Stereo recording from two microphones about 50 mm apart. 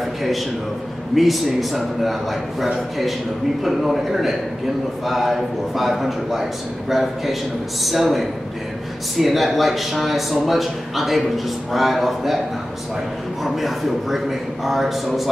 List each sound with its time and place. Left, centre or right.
0.0 s a sound: centre
1.1 s a man's voice: centre
13.4 s a man's voice: centre